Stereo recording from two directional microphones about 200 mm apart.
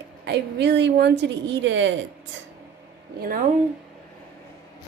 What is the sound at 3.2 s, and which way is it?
Speech, 45° right (ahead or behind).